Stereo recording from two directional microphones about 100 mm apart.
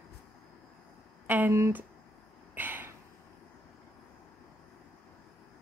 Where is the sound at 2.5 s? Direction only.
20° right (ahead or behind).